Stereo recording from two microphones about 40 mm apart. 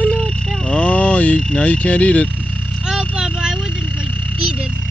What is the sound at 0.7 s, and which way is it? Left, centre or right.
Speech, left.